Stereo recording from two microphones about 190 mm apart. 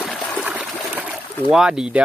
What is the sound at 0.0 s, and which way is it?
Water, 5° left (ahead or behind).